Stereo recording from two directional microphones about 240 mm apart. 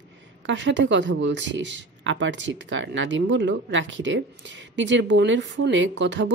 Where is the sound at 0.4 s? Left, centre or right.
Right.